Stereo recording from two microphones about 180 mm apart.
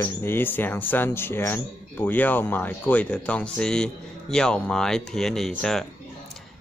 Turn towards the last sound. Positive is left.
turn(degrees=5)  # may be behind; listen again after turning